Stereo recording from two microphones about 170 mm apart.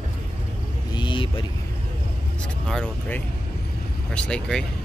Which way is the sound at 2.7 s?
5° left (ahead or behind).